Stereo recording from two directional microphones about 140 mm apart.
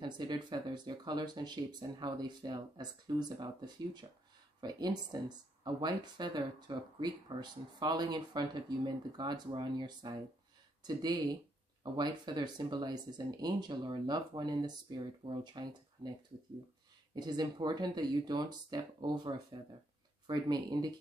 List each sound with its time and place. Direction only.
0.0 s speech: 30° right (ahead or behind)
17.1 s speech: 30° right (ahead or behind)